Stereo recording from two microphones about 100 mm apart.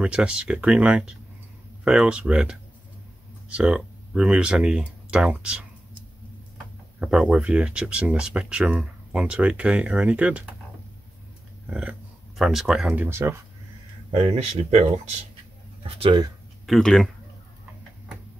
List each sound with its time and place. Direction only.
0.0 s speech: 10° right (ahead or behind)
7.0 s speech: 10° right (ahead or behind)
11.7 s speech: 5° right (ahead or behind)
12.9 s speech: 25° right (ahead or behind)
14.1 s speech: 85° right
16.0 s speech: 50° right (ahead or behind)
16.6 s speech: 5° left (ahead or behind)